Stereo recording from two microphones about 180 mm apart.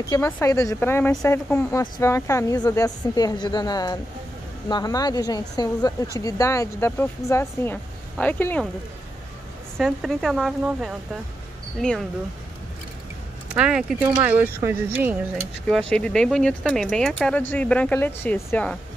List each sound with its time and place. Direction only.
0.1 s a woman's voice: 15° left (ahead or behind)
9.8 s speech: centre (ahead or behind)
13.6 s speech: 5° right (ahead or behind)
15.9 s speech: 5° left (ahead or behind)